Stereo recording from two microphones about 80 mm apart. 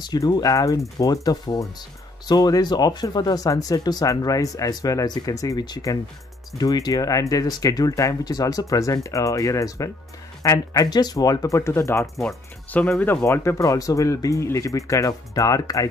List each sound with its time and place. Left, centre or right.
0.1 s speech: left
5.6 s speech: left
12.7 s speech: centre
13.2 s speech: left